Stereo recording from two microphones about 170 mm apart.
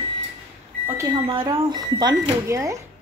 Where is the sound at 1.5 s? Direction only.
25° right (ahead or behind).